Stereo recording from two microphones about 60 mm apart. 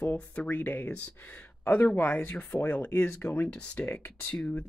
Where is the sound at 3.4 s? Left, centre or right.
Left.